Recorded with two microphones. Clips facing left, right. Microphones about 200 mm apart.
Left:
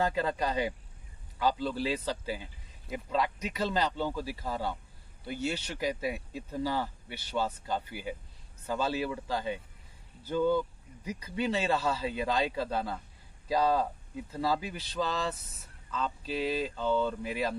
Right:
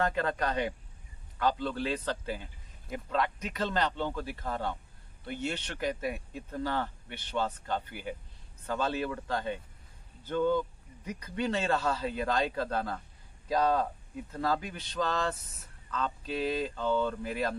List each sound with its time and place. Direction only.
0.0 s a man's voice: 5° left (ahead or behind)